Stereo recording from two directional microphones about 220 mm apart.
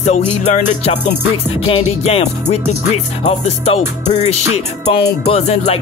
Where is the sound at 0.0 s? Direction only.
30° left (ahead or behind).